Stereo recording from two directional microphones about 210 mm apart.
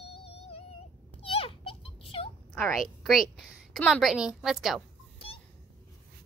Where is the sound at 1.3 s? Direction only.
25° left (ahead or behind).